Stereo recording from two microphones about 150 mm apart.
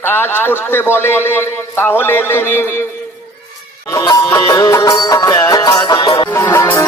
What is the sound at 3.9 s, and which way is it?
Sitar, 20° left (ahead or behind).